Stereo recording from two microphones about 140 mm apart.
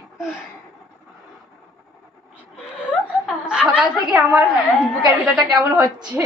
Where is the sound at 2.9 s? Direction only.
5° right (ahead or behind).